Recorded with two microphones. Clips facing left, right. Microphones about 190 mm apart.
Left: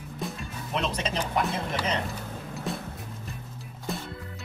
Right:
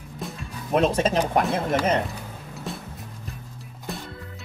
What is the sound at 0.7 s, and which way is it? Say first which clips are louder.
Speech: right 10 dB; 50° right (ahead or behind).